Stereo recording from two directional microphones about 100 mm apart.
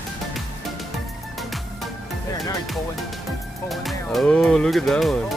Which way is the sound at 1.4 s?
Centre (ahead or behind).